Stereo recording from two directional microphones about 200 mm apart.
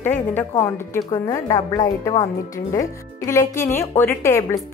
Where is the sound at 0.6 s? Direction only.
15° left (ahead or behind).